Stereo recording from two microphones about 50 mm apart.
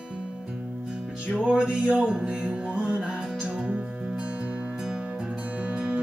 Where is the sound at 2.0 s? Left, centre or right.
Centre.